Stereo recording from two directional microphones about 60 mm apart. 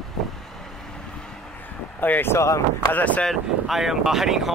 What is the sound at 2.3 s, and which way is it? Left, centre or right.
Speech, left.